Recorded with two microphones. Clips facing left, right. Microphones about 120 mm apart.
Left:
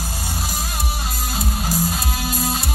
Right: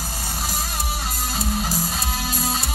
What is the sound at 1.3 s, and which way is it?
Music, centre (ahead or behind).